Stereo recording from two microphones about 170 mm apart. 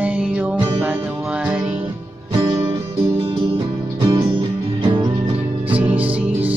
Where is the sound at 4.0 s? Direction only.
25° right (ahead or behind).